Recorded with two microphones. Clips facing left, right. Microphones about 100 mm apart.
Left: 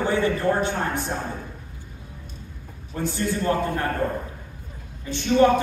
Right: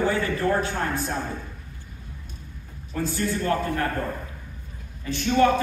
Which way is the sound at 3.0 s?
25° left (ahead or behind).